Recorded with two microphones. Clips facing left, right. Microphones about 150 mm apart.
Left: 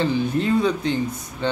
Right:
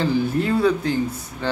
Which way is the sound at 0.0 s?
5° right (ahead or behind).